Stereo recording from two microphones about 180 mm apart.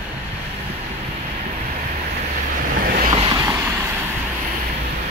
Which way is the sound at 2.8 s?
55° right (ahead or behind).